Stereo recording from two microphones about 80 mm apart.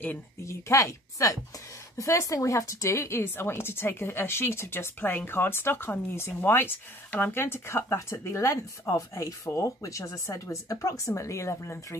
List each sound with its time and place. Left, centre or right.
0.5 s speech: left